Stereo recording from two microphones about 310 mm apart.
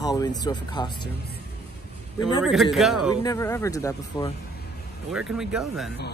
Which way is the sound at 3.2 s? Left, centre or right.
Centre.